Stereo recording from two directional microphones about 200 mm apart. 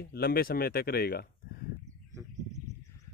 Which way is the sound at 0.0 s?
50° left (ahead or behind).